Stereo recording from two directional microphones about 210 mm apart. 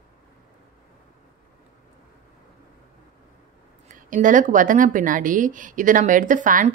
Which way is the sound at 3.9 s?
35° right (ahead or behind).